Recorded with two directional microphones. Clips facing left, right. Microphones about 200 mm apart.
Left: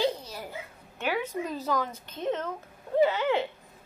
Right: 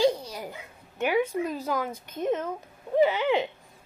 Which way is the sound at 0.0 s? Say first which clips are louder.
Right 5 dB; 10° right (ahead or behind).